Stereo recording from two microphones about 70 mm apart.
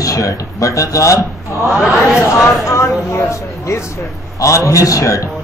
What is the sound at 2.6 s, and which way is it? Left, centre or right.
A man's voice, left.